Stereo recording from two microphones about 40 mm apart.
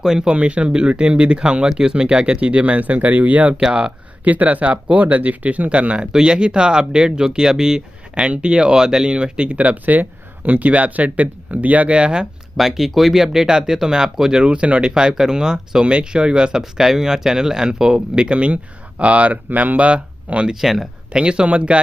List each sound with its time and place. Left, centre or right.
0.0 s speech: centre
0.3 s speech: right
3.5 s speech: right
4.2 s speech: right
6.1 s speech: right
9.6 s speech: right
12.0 s speech: right
12.5 s speech: centre
14.4 s speech: right
20.6 s speech: centre
21.1 s speech: right